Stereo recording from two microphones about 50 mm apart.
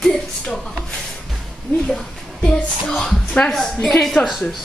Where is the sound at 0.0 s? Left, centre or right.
Centre.